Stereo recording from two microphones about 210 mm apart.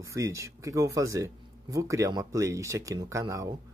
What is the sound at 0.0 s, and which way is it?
Speech, 15° right (ahead or behind).